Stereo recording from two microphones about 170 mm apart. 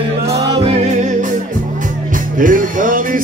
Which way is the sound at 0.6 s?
40° right (ahead or behind).